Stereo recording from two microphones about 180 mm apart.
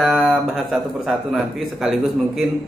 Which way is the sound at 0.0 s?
Centre (ahead or behind).